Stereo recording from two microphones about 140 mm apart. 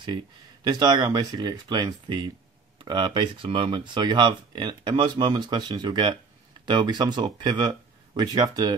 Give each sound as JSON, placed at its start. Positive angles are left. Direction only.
{"t": 0.7, "sound": "speech", "side_deg": -30}